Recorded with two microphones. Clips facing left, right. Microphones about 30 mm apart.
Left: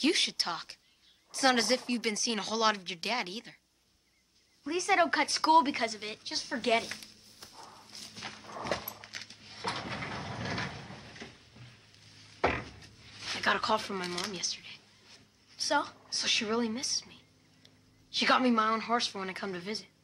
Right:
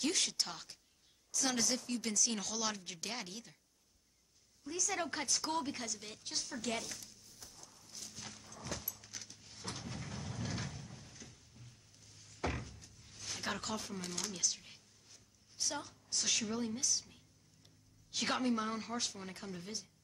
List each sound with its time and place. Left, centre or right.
0.0 s speech: left
4.6 s a sound: left
18.1 s speech: left